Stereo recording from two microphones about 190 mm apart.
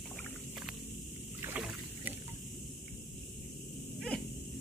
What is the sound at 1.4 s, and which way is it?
Rowboat, 10° right (ahead or behind).